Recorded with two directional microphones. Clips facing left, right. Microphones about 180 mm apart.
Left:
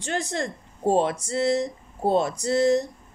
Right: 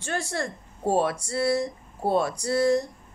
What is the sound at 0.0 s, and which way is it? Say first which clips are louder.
A woman's voice: left 2 dB; 20° left (ahead or behind).